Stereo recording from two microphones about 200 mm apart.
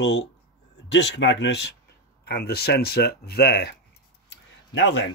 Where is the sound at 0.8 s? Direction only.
60° left (ahead or behind).